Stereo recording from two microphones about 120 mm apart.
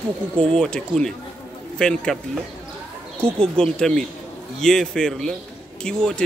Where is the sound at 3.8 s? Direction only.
5° left (ahead or behind).